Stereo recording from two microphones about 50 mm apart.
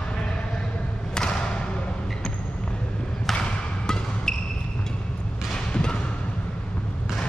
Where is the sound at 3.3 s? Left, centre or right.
Centre.